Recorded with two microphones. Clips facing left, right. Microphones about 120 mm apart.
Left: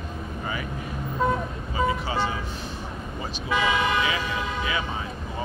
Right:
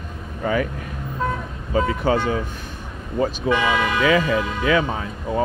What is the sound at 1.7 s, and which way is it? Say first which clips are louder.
Speech: right 6 dB; 50° right (ahead or behind).